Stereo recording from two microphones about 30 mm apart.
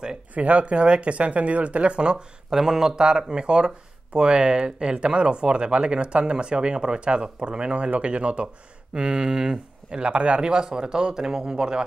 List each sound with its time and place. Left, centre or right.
0.3 s speech: right
2.5 s speech: centre; by 8.5 s right
8.9 s speech: right
10.4 s speech: right